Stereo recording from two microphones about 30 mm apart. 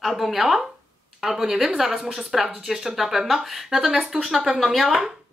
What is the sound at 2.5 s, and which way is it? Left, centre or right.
Speech, centre.